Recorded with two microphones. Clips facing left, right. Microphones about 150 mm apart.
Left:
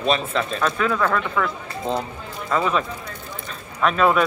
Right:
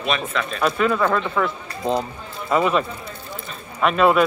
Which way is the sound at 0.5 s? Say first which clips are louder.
Right 4 dB; 10° right (ahead or behind).